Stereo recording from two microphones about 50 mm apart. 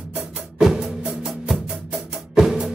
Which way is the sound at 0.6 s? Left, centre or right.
Centre.